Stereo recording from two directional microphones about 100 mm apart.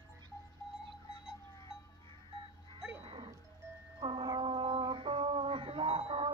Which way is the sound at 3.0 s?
70° right (ahead or behind).